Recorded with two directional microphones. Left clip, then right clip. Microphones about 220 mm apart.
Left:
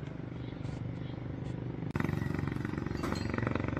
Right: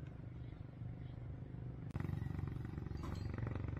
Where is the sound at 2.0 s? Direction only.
50° right (ahead or behind).